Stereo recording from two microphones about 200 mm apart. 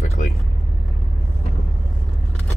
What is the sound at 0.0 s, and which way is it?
Vehicle, 35° left (ahead or behind).